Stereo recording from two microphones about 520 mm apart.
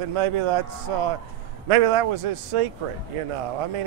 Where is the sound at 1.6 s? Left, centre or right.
Right.